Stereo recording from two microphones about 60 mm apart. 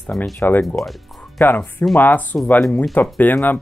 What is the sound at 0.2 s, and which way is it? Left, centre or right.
Speech, left.